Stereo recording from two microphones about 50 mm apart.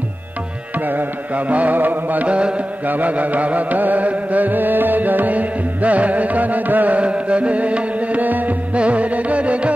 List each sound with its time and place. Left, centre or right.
0.7 s music: right
2.2 s music: right
2.8 s music: right